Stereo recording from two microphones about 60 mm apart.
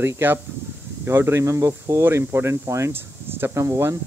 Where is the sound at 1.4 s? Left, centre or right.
Right.